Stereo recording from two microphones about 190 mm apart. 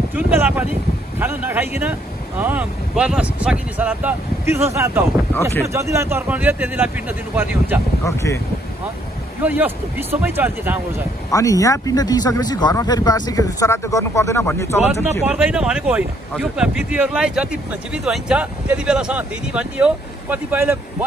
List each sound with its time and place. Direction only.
0.1 s speech: 10° right (ahead or behind)
8.0 s speech: 15° left (ahead or behind)
9.4 s speech: 10° right (ahead or behind)
11.2 s speech: 15° left (ahead or behind)
15.2 s speech: 5° right (ahead or behind)